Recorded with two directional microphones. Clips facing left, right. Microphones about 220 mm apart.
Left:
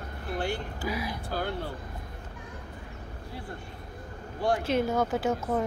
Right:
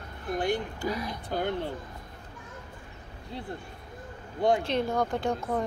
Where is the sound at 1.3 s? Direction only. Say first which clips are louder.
Right 4 dB; 20° right (ahead or behind).